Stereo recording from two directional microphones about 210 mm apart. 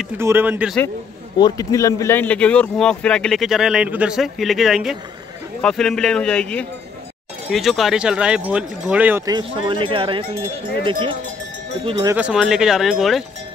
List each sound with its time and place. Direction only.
0.0 s speech: 10° right (ahead or behind)
1.4 s speech: 15° left (ahead or behind); by 12.1 s 25° right (ahead or behind)
12.1 s speech: 5° right (ahead or behind)